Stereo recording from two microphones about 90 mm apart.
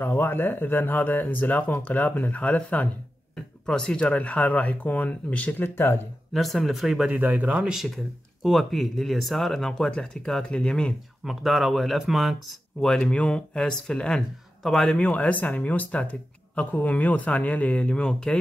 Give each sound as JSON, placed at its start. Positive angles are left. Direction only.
{"t": 0.0, "sound": "speech", "side_deg": 25}
{"t": 6.3, "sound": "speech", "side_deg": 0}
{"t": 7.1, "sound": "speech", "side_deg": -15}
{"t": 7.7, "sound": "speech", "side_deg": 0}
{"t": 11.2, "sound": "speech", "side_deg": 0}
{"t": 15.0, "sound": "speech", "side_deg": 15}